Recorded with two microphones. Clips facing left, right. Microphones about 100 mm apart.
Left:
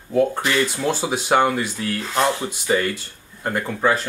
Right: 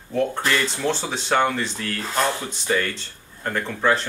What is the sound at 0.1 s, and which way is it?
Speech, 5° left (ahead or behind).